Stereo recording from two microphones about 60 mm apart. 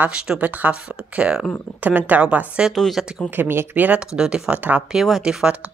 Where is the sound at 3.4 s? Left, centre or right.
Right.